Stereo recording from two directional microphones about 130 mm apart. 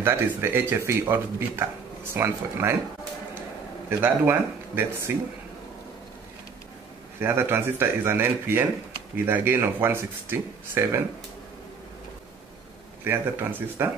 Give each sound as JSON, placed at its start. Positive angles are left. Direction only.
{"t": 0.0, "sound": "speech", "side_deg": -20}
{"t": 4.0, "sound": "a man's voice", "side_deg": -15}
{"t": 7.2, "sound": "a man's voice", "side_deg": -20}
{"t": 13.0, "sound": "a man's voice", "side_deg": -15}